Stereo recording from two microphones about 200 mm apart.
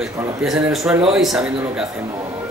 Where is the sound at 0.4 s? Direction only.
Centre (ahead or behind).